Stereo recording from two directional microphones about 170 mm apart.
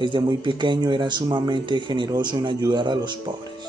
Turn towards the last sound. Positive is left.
turn(degrees=-25)  # may be behind; listen again after turning